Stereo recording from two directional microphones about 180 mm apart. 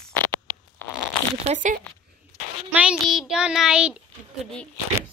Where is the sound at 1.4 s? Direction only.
40° right (ahead or behind).